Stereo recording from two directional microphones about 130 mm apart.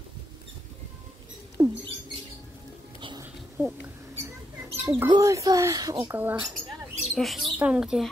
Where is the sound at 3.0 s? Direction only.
40° right (ahead or behind).